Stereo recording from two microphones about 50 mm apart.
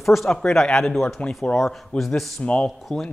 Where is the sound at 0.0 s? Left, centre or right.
Centre.